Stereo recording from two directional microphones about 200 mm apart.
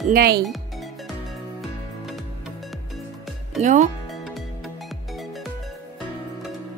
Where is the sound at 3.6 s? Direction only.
35° right (ahead or behind).